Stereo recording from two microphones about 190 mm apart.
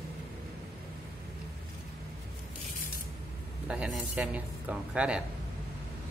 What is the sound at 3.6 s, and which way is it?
Speech, 5° right (ahead or behind).